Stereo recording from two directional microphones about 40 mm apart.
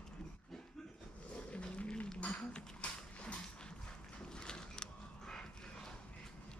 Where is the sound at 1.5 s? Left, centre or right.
Left.